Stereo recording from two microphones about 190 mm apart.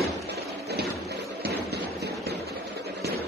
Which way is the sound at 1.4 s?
60° right (ahead or behind).